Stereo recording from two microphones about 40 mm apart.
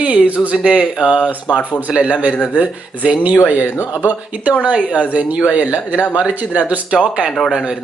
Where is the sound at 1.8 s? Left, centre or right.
Right.